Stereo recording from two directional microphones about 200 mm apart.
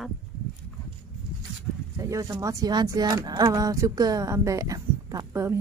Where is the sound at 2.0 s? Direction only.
15° right (ahead or behind).